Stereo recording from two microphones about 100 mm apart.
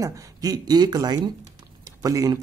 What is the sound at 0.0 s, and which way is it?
Speech, 40° right (ahead or behind).